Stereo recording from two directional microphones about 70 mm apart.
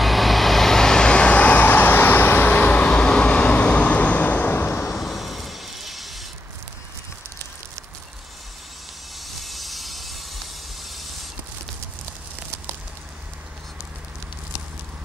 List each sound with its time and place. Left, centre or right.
0.0 s vehicle: centre; by 4.8 s left
4.8 s a sound: centre
9.2 s vehicle: centre